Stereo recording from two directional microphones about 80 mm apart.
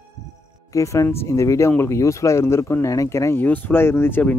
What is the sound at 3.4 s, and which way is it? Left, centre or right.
Speech, left.